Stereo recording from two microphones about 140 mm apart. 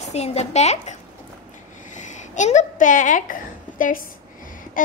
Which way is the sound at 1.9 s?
60° left (ahead or behind).